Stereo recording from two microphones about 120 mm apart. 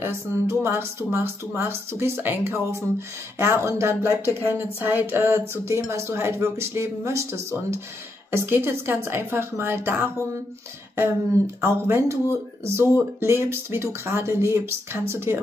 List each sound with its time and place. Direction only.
0.0 s speech: 20° right (ahead or behind)
11.6 s speech: 25° right (ahead or behind)